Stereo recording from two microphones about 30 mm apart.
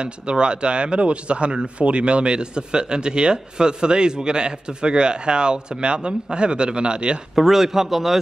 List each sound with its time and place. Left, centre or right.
0.0 s speech: right
7.3 s a man's voice: centre